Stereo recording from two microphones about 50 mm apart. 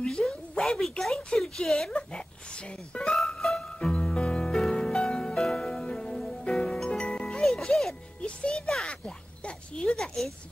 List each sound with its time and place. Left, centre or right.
0.2 s a sound: centre
1.9 s speech: centre
3.0 s speech: centre
3.3 s music: centre
3.8 s music: centre
8.4 s a sound: centre
9.8 s speech: centre